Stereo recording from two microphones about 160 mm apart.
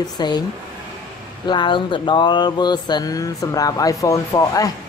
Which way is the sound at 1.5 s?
30° left (ahead or behind).